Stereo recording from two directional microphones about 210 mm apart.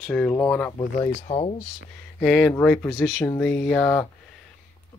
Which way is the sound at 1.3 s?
25° left (ahead or behind).